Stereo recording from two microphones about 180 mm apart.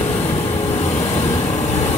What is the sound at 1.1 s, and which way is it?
Vehicle, 40° left (ahead or behind).